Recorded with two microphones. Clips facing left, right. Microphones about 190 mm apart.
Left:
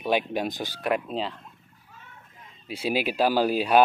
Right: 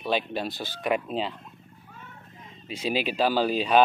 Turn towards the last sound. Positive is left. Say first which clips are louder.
# left 1 dB
turn(degrees=10)  # may be behind; listen again after turning